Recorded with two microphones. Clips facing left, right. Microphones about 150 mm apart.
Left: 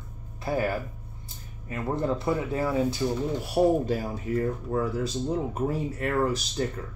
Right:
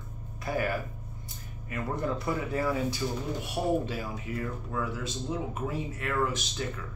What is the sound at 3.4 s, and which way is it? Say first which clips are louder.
Speech: left 7 dB; 40° left (ahead or behind).